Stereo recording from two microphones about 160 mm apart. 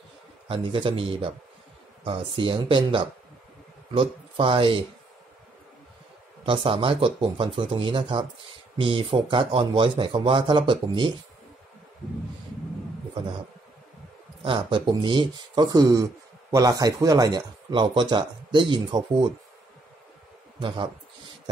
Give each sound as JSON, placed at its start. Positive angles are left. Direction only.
{"t": 0.5, "sound": "speech", "side_deg": -30}
{"t": 6.4, "sound": "speech", "side_deg": -35}
{"t": 14.4, "sound": "speech", "side_deg": -35}
{"t": 20.5, "sound": "speech", "side_deg": -30}